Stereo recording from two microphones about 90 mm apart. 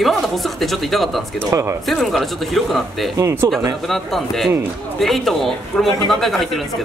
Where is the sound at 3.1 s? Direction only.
35° right (ahead or behind).